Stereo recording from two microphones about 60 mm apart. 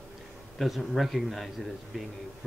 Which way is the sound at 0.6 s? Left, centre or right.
Centre.